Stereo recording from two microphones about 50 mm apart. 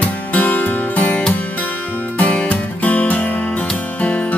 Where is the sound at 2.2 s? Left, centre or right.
Left.